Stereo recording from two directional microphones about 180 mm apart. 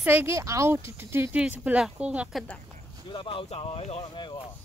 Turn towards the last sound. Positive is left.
turn(degrees=25)  # may be behind; listen again after turning